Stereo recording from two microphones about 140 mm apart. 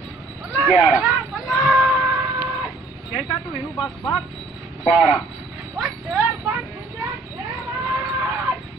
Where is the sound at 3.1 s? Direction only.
15° right (ahead or behind).